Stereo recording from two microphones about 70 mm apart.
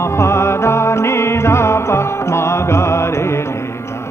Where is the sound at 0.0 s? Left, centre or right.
Left.